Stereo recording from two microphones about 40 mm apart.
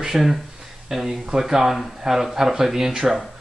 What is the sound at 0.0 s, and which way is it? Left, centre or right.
Speech, centre.